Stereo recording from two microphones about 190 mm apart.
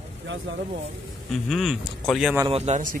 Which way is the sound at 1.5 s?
Centre (ahead or behind).